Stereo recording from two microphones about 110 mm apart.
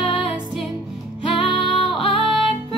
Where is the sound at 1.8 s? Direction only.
Centre (ahead or behind).